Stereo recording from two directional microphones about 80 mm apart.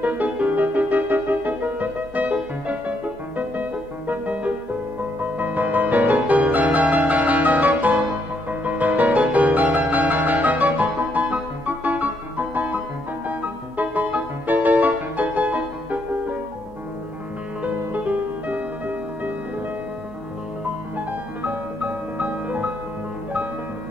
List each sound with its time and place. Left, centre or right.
0.0 s music: centre
4.1 s music: centre
17.9 s music: centre
21.4 s music: right